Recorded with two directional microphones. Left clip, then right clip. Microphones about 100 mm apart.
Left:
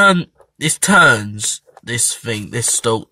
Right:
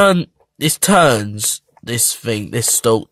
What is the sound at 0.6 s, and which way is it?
Speech, 40° right (ahead or behind).